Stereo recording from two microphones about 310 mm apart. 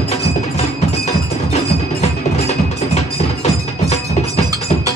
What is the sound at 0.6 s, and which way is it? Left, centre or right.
Wood block, left.